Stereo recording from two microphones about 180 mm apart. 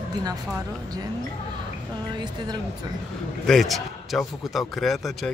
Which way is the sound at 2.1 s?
25° right (ahead or behind).